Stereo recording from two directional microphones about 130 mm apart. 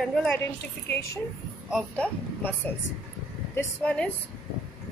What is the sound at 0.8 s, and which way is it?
Speech, 20° left (ahead or behind).